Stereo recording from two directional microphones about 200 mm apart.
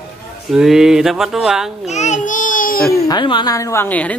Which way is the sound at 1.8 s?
35° left (ahead or behind).